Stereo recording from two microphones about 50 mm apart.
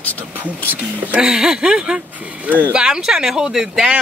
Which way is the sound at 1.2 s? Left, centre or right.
Centre.